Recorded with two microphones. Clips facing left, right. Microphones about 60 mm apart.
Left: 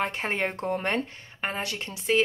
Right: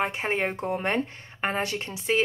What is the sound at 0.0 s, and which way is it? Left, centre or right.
Speech, centre.